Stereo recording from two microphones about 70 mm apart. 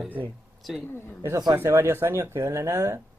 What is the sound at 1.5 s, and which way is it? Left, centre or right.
Speech, right.